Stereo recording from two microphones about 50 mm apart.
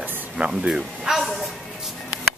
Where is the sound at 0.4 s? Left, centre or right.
Centre.